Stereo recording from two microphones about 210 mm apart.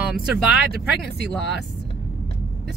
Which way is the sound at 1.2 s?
55° left (ahead or behind).